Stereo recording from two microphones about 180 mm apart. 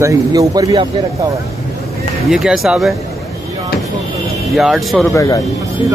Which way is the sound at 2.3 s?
5° right (ahead or behind).